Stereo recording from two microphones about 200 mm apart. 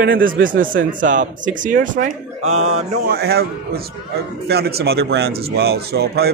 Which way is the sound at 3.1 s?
50° right (ahead or behind).